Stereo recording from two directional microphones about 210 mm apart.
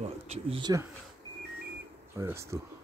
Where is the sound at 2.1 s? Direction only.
10° right (ahead or behind).